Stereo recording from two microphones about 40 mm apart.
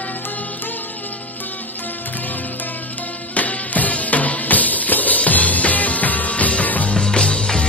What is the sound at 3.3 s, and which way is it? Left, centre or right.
Music, left.